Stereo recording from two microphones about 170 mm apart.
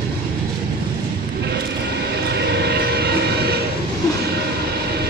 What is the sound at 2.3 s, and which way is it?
Vehicle, 75° right (ahead or behind).